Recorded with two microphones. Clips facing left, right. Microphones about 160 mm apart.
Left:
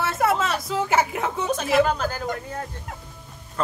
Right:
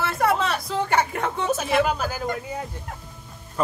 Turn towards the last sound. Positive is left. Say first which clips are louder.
# right 2 dB
turn(degrees=-10)  # may be behind; listen again after turning